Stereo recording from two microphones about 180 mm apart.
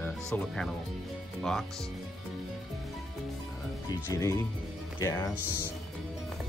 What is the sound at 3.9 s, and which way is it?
Speech, 15° left (ahead or behind).